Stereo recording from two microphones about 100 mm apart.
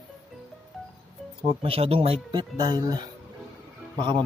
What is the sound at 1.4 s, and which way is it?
Speech, 65° right (ahead or behind).